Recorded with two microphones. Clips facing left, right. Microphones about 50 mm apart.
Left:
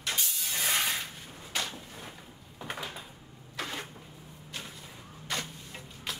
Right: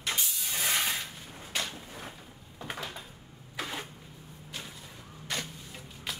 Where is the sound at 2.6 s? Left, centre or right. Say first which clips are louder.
Even; centre.